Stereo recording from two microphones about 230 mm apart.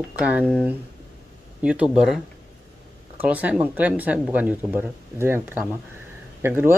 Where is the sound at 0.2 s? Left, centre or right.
Centre.